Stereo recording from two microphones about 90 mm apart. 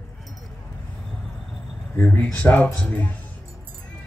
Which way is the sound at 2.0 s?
15° left (ahead or behind).